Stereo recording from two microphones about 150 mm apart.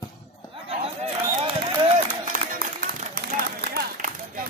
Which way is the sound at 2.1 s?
65° right (ahead or behind).